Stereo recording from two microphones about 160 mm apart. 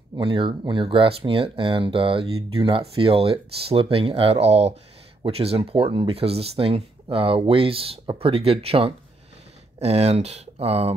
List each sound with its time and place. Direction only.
0.1 s speech: 30° right (ahead or behind)